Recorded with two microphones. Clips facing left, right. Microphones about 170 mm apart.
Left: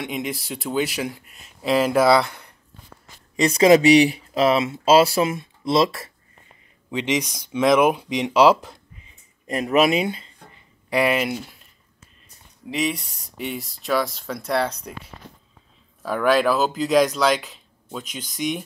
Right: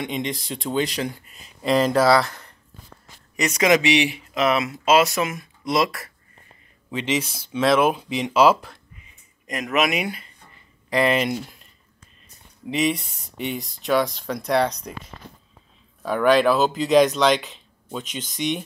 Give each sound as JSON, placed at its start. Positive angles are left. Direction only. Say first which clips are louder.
{"t": 0.0, "sound": "speech", "louder": "right 1 dB", "side_deg": 5}
{"t": 3.3, "sound": "speech", "louder": "left 5 dB", "side_deg": 30}
{"t": 6.9, "sound": "speech", "louder": "left 1 dB", "side_deg": 15}
{"t": 9.5, "sound": "speech", "louder": "left 4 dB", "side_deg": 30}
{"t": 10.9, "sound": "speech", "louder": "even", "side_deg": 10}
{"t": 12.6, "sound": "speech", "louder": "right 2 dB", "side_deg": 0}